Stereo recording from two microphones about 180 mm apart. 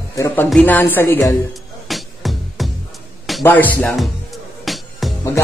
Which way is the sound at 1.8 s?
Centre (ahead or behind).